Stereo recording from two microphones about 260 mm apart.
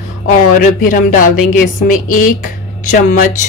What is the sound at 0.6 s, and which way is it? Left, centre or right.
Speech, left.